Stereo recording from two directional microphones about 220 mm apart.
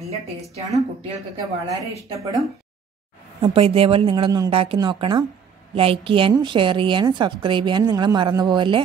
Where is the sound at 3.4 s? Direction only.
25° right (ahead or behind).